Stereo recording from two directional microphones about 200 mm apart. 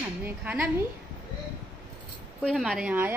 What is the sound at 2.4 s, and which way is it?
Speech, centre (ahead or behind).